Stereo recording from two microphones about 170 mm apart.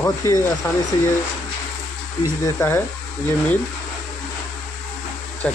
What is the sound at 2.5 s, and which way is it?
Speech, 10° left (ahead or behind).